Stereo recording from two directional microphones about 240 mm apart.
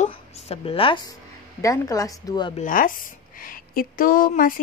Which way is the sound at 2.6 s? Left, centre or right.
Left.